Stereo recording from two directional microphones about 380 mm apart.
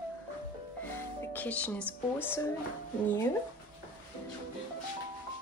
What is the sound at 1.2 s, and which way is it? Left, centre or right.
Speech, centre.